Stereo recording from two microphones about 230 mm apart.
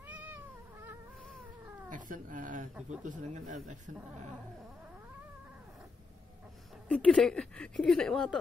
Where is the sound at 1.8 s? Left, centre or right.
Right.